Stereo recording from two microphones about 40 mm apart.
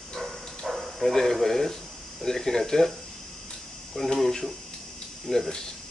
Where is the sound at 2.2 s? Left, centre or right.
Centre.